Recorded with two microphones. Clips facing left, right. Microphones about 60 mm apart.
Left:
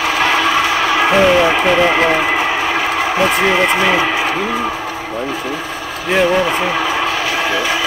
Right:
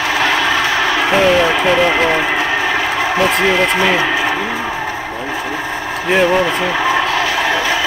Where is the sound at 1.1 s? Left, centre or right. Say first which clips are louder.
Left 1 dB; centre.